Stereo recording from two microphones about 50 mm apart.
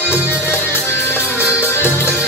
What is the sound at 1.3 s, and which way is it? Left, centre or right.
Music, left.